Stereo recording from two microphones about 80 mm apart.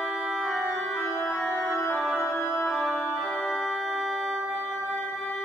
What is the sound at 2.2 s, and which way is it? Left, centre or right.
Organ, left.